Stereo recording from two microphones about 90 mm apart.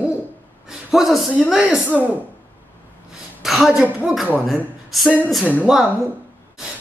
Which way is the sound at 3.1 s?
5° right (ahead or behind).